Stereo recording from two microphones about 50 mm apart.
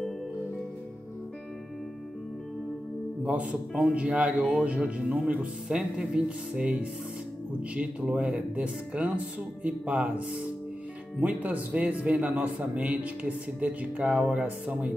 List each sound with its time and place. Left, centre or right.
3.3 s speech: right